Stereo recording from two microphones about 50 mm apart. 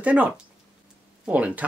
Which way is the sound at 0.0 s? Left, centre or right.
Right.